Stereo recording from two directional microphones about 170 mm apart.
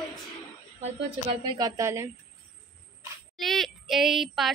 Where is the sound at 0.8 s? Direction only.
35° right (ahead or behind).